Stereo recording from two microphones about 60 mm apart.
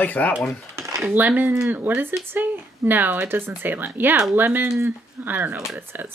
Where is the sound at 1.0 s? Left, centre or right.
Right.